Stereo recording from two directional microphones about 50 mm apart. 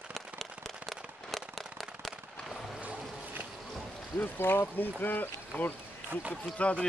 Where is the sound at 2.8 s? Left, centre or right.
Right.